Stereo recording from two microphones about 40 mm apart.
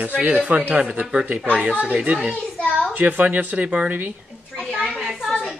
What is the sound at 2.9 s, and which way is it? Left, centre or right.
Speech, right.